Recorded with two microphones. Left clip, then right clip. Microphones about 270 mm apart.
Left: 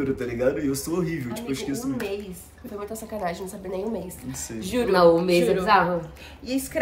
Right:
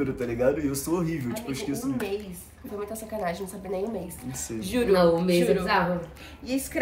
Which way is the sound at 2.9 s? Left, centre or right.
Centre.